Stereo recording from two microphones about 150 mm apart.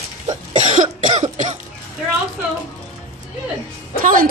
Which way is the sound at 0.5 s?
55° right (ahead or behind).